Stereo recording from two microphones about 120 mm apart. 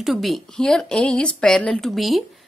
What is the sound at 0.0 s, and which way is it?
A woman's voice, centre (ahead or behind).